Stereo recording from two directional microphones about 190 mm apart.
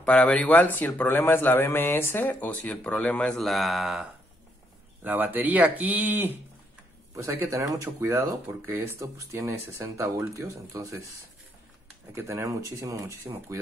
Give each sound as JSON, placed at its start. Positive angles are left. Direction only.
{"t": 0.0, "sound": "a man's voice", "side_deg": 5}
{"t": 12.1, "sound": "speech", "side_deg": -15}